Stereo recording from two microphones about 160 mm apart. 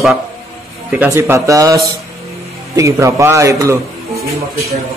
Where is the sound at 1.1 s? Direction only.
15° right (ahead or behind).